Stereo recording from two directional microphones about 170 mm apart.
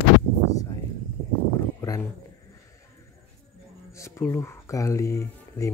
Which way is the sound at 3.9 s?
15° left (ahead or behind).